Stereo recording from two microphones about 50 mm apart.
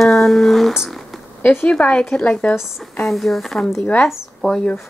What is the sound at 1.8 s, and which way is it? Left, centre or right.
Speech, left.